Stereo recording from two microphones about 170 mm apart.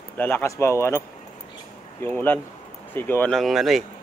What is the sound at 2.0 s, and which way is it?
Speech, 10° left (ahead or behind).